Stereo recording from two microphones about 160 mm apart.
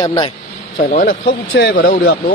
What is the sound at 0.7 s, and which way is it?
Speech, 55° left (ahead or behind).